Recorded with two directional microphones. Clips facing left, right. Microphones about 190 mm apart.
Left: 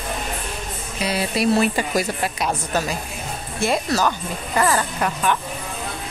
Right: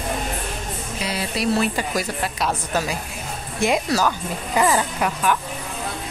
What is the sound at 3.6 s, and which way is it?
Speech, 10° right (ahead or behind).